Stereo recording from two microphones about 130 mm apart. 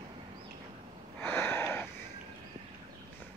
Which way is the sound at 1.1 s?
15° left (ahead or behind).